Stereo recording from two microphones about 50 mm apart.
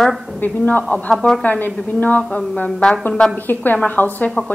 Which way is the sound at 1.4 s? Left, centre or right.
Left.